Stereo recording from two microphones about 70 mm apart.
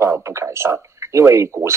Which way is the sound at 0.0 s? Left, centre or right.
Right.